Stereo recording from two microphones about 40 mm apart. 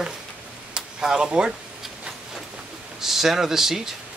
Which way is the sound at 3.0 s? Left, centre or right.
Centre.